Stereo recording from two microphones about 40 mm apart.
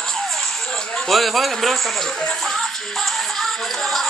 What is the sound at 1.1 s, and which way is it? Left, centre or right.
Speech, centre.